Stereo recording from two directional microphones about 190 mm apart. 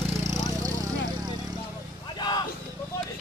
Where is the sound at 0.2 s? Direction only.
15° right (ahead or behind).